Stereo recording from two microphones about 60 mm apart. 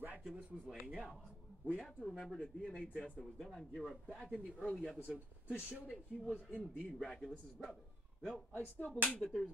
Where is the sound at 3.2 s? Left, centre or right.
Centre.